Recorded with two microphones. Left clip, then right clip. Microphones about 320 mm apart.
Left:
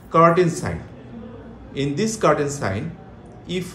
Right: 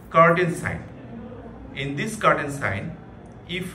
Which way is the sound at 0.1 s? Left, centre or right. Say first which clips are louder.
Left 2 dB; centre.